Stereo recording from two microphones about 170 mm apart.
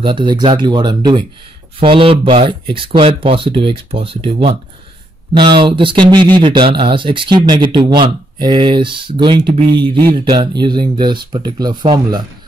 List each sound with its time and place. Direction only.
0.0 s speech: 30° right (ahead or behind)